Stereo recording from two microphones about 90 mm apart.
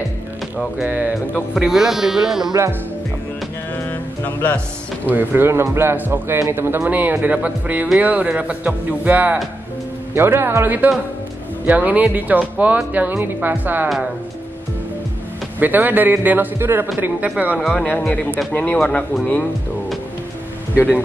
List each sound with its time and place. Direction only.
0.7 s speech: 15° right (ahead or behind)
1.5 s speech: 5° right (ahead or behind)
4.2 s speech: 20° left (ahead or behind)
5.1 s a man's voice: 25° right (ahead or behind)
15.6 s a man's voice: 20° right (ahead or behind)
17.6 s speech: 5° left (ahead or behind)
17.8 s speech: 15° left (ahead or behind)
20.7 s speech: 20° left (ahead or behind)